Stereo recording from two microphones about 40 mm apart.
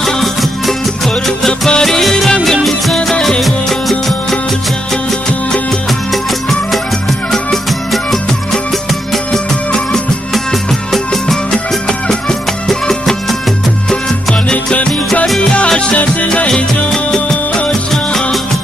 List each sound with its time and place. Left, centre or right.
0.0 s music: centre
10.3 s music: centre
12.1 s music: centre
14.5 s music: left
16.0 s music: left
16.4 s music: centre